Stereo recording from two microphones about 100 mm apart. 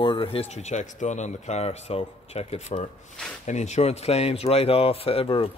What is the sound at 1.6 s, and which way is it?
Speech, 90° left.